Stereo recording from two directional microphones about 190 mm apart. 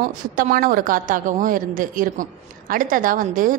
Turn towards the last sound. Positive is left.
turn(degrees=-45)  # may be behind; listen again after turning